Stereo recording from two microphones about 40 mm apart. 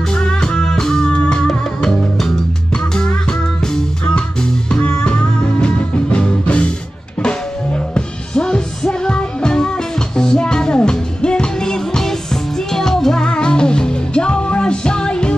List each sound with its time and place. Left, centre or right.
0.2 s music: left
4.7 s music: left
5.0 s music: left